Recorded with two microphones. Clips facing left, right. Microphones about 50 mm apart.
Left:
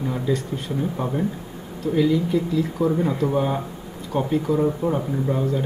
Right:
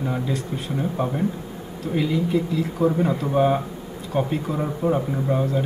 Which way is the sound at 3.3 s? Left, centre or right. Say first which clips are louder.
Right 3 dB; centre.